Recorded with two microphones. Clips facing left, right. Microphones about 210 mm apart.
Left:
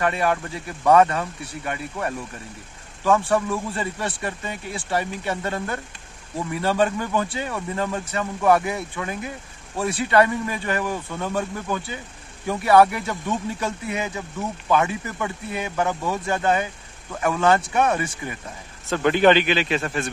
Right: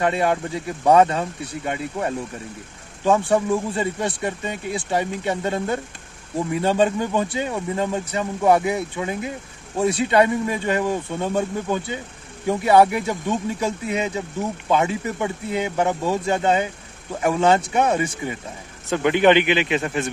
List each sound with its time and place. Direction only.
0.0 s a man's voice: 20° right (ahead or behind)